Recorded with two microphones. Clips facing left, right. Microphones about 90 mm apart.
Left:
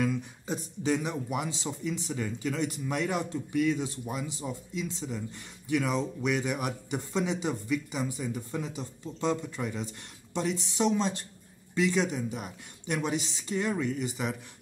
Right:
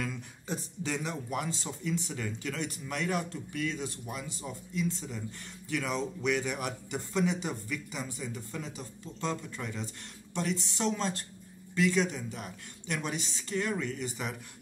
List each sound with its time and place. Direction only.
0.0 s speech: 5° left (ahead or behind)
4.5 s a man's voice: 5° left (ahead or behind)